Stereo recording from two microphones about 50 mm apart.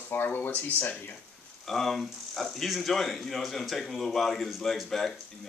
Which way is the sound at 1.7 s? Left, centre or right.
Centre.